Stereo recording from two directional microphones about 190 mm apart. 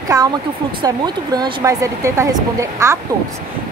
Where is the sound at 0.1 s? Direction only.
20° right (ahead or behind).